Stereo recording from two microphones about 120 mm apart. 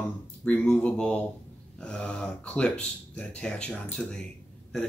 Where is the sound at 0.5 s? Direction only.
10° left (ahead or behind).